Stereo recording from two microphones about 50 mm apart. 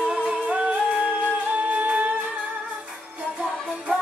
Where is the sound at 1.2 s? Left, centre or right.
Right.